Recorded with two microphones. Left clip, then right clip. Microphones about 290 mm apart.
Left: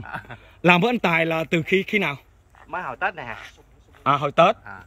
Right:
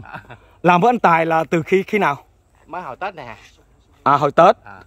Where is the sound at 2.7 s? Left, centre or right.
Right.